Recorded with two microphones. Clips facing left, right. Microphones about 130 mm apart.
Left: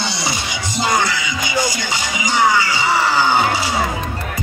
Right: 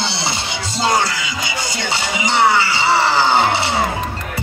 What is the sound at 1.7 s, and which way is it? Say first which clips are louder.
Music: right 2 dB; 30° right (ahead or behind).